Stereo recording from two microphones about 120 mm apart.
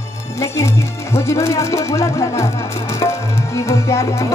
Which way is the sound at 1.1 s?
25° left (ahead or behind).